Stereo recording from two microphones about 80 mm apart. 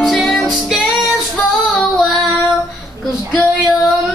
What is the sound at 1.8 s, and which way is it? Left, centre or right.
Child singing, centre.